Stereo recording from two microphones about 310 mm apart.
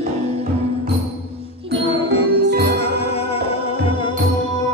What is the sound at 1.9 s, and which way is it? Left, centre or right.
Music, centre.